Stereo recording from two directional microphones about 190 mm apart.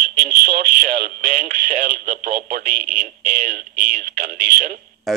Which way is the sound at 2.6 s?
45° right (ahead or behind).